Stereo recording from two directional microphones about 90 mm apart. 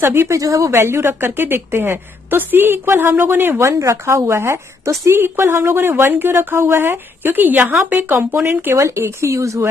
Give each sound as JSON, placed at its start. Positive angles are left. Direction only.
{"t": 0.0, "sound": "a woman's voice", "side_deg": -30}